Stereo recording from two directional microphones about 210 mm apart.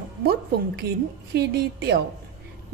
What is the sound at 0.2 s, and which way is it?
A woman's voice, 50° right (ahead or behind).